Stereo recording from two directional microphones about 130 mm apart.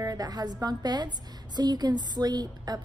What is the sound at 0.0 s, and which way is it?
A woman's voice, 30° right (ahead or behind).